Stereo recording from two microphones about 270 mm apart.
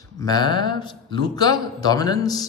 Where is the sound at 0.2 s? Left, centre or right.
Centre.